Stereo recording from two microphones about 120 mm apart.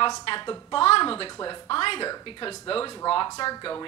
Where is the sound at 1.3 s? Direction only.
35° left (ahead or behind).